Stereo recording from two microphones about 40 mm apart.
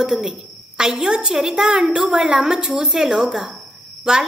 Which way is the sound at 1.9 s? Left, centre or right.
Right.